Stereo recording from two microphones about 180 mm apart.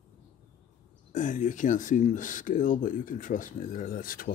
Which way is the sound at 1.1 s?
45° left (ahead or behind).